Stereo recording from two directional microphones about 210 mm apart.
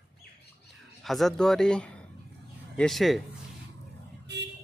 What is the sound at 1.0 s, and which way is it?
Speech, centre (ahead or behind).